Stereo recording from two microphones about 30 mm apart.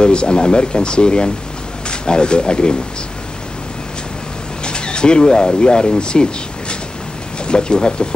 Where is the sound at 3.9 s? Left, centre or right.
Left.